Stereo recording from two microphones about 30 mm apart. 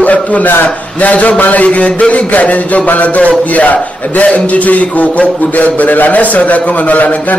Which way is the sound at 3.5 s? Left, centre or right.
Left.